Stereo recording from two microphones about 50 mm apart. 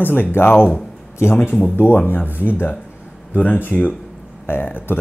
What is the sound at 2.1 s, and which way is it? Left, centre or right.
Speech, left.